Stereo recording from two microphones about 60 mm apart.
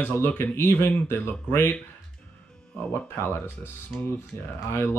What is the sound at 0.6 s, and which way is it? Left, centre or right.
Speech, left.